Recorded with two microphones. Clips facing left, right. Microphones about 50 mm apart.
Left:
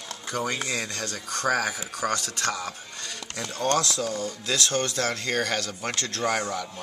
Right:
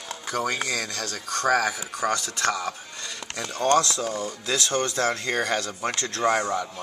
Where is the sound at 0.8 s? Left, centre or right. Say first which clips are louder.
Right 1 dB; centre.